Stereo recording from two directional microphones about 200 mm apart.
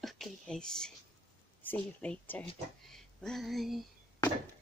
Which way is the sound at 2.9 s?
Centre (ahead or behind).